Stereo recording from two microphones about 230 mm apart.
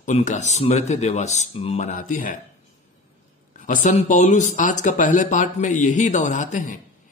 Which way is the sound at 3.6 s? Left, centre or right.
Left.